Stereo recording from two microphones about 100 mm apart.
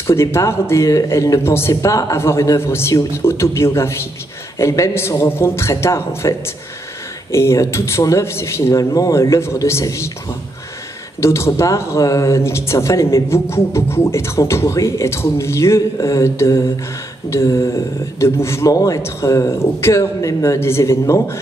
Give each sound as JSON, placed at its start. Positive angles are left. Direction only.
{"t": 0.0, "sound": "speech", "side_deg": 25}
{"t": 7.3, "sound": "speech", "side_deg": 25}
{"t": 11.1, "sound": "speech", "side_deg": 30}